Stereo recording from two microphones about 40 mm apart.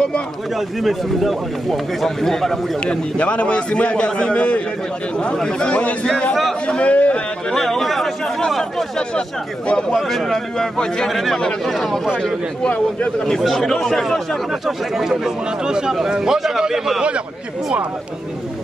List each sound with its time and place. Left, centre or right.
0.6 s a man's voice: centre
2.8 s a man's voice: left
7.5 s a man's voice: centre
9.7 s a man's voice: left
9.9 s speech: centre
11.1 s a man's voice: centre
12.6 s a man's voice: left
13.4 s speech: centre
14.5 s speech: centre